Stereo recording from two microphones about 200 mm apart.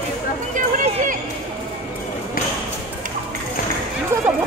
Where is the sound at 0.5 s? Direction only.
40° right (ahead or behind).